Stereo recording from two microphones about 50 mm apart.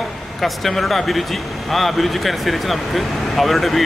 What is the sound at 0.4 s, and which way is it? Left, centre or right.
Speech, centre.